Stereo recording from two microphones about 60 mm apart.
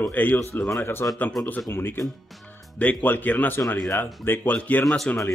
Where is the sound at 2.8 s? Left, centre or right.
Left.